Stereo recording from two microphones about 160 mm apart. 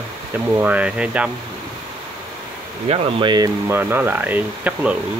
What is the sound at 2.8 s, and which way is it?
Speech, 35° right (ahead or behind).